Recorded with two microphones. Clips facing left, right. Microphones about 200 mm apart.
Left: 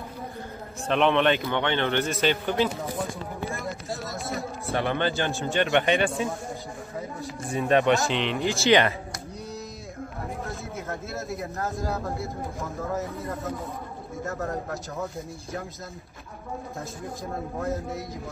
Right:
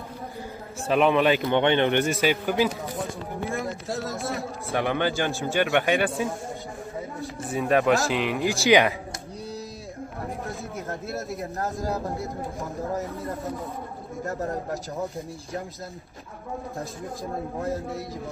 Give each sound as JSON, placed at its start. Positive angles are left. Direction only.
{"t": 0.8, "sound": "speech", "side_deg": -5}
{"t": 1.4, "sound": "a man's voice", "side_deg": -15}
{"t": 4.1, "sound": "chatter", "side_deg": 0}
{"t": 4.6, "sound": "a man's voice", "side_deg": -15}
{"t": 10.9, "sound": "speech", "side_deg": -35}
{"t": 11.6, "sound": "a man's voice", "side_deg": -15}
{"t": 14.3, "sound": "a man's voice", "side_deg": -15}